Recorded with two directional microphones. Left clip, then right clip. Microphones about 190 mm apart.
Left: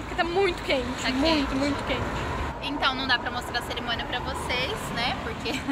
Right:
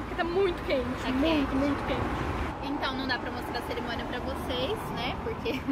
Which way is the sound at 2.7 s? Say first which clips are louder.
Left 7 dB; 20° right (ahead or behind).